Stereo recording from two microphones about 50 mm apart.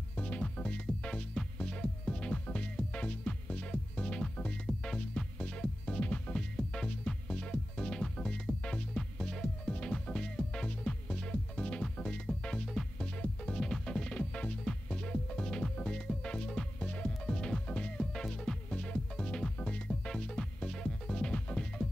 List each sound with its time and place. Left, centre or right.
0.1 s music: left
6.3 s music: centre